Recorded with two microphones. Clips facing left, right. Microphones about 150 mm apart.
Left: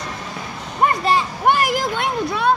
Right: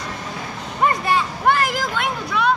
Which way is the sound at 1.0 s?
20° left (ahead or behind).